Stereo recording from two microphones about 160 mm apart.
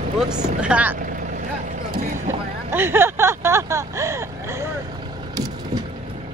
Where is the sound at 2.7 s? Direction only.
15° right (ahead or behind).